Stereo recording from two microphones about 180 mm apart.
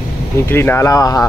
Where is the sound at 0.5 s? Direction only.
10° left (ahead or behind).